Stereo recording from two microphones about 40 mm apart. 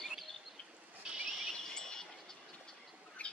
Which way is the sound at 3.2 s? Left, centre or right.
Left.